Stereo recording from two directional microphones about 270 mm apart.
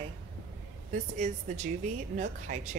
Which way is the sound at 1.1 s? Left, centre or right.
Right.